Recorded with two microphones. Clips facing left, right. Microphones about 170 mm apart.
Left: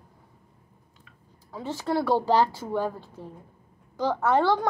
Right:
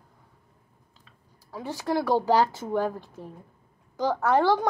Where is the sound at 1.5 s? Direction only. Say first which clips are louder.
Even; 15° right (ahead or behind).